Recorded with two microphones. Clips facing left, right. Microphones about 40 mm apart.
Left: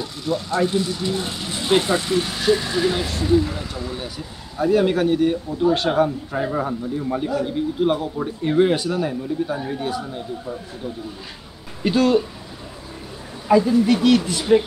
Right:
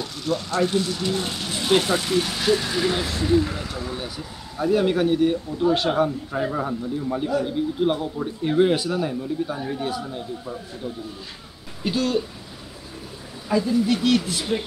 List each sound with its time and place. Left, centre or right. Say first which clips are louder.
0.0 s a sound: left 1 dB; centre
0.6 s speech: left 1 dB; centre
2.6 s speech: left 2 dB; centre
4.6 s speech: left 2 dB; centre
11.8 s speech: left 6 dB; centre
13.5 s speech: left 6 dB; centre
14.1 s speech: left 6 dB; centre